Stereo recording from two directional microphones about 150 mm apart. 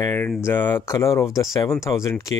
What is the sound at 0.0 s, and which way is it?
Speech, 15° left (ahead or behind).